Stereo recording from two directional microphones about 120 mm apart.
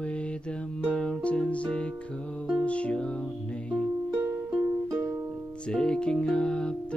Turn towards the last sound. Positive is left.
turn(degrees=10)  # may be behind; listen again after turning